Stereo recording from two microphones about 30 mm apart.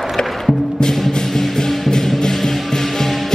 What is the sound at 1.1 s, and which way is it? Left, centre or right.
Music, centre.